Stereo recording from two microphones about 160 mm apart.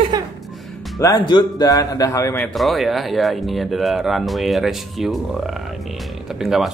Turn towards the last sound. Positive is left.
turn(degrees=0)  # may be behind; listen again after turning